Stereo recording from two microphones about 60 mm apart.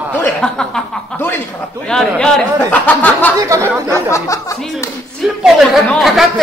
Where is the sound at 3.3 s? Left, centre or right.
Right.